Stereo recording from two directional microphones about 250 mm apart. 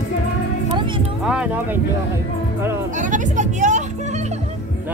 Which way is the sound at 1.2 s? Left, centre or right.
Centre.